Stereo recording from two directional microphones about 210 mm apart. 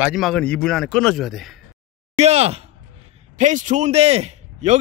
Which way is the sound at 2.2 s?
30° right (ahead or behind).